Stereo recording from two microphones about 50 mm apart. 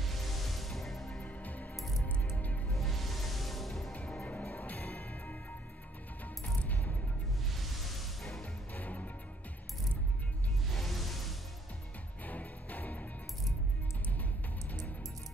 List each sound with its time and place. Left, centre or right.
0.0 s music: centre
1.2 s music: left
2.7 s music: centre
4.3 s music: left
7.5 s music: centre
8.7 s music: left
10.7 s music: centre
12.3 s music: left